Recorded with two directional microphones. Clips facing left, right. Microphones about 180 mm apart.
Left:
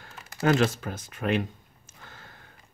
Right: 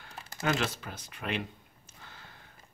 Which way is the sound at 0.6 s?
45° left (ahead or behind).